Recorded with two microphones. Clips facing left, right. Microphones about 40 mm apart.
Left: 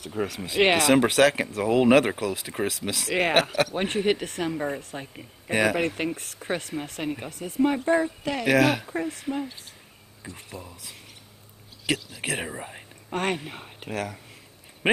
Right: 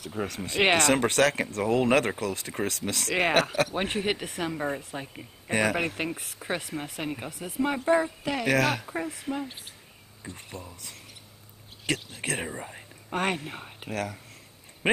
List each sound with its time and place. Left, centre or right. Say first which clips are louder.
0.0 s speech: left 3 dB; centre
12.3 s speech: left 1 dB; centre
13.1 s speech: left 1 dB; centre